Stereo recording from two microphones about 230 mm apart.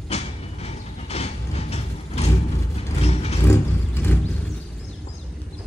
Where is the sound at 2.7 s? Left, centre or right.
Left.